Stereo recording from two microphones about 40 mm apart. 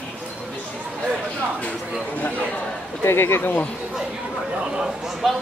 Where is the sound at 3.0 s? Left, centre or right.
Left.